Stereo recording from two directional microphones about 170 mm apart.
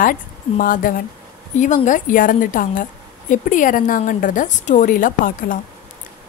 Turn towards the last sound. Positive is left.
turn(degrees=55)  # may be behind; listen again after turning